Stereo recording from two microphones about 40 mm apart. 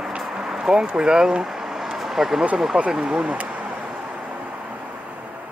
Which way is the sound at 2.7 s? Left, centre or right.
Centre.